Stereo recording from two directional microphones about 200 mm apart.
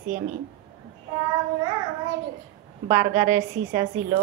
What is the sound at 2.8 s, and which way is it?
A woman's voice, 40° right (ahead or behind).